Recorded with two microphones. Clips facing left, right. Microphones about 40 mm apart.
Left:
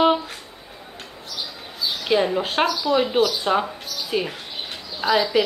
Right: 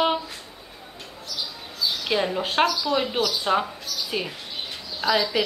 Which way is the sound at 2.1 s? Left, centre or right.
Centre.